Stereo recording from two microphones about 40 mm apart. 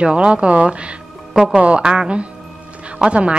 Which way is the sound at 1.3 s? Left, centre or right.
Centre.